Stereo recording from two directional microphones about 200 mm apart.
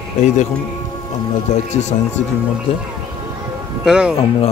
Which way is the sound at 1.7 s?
35° left (ahead or behind).